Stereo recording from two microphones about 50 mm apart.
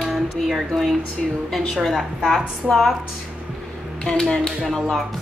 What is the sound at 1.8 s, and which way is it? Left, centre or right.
A woman's voice, centre.